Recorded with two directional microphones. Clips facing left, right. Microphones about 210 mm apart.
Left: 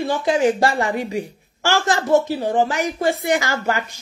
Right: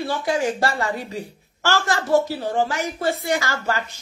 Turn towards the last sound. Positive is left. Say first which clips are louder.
# left 3 dB
turn(degrees=15)  # may be behind; listen again after turning